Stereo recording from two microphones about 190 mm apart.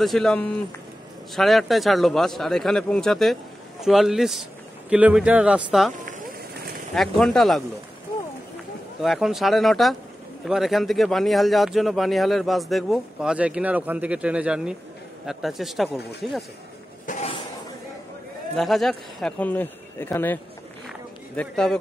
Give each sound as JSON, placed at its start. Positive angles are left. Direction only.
{"t": 0.0, "sound": "a man's voice", "side_deg": 0}
{"t": 7.0, "sound": "a man's voice", "side_deg": 0}
{"t": 9.0, "sound": "a man's voice", "side_deg": 0}
{"t": 17.0, "sound": "a sound", "side_deg": 40}
{"t": 18.6, "sound": "a man's voice", "side_deg": 0}
{"t": 21.4, "sound": "a man's voice", "side_deg": 5}